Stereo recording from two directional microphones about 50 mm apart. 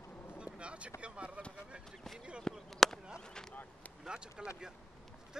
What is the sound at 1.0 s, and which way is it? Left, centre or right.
Speech, right.